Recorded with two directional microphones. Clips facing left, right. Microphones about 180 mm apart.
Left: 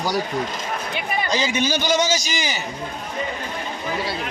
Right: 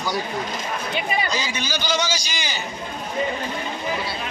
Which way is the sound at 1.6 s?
50° left (ahead or behind).